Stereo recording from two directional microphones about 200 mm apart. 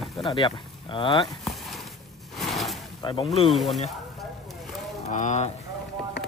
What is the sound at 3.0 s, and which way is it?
Speech, 25° left (ahead or behind).